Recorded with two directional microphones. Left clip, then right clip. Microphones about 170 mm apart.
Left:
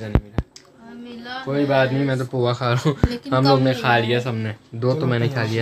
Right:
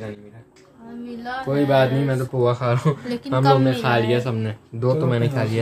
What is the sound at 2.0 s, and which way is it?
Speech, 25° left (ahead or behind).